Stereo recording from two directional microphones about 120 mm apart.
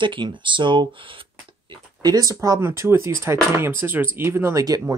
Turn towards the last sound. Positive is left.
turn(degrees=-30)  # may be behind; listen again after turning